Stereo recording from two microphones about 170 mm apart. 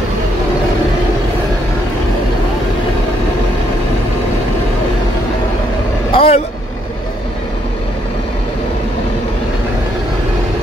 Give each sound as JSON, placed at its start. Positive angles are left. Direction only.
{"t": 6.1, "sound": "vehicle", "side_deg": 35}